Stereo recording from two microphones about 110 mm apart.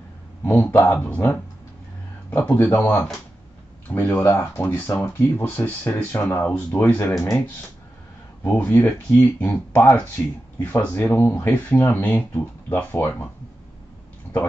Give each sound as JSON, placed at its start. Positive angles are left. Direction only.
{"t": 0.5, "sound": "speech", "side_deg": 15}
{"t": 8.5, "sound": "speech", "side_deg": 15}